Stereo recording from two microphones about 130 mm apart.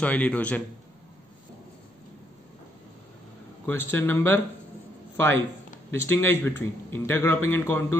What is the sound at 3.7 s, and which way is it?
Speech, 15° left (ahead or behind).